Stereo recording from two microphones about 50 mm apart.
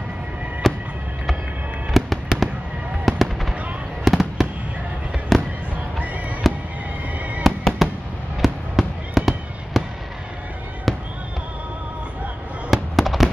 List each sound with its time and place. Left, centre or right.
0.6 s music: centre
1.9 s fireworks: centre
5.9 s fireworks: right
7.4 s fireworks: centre
12.6 s fireworks: centre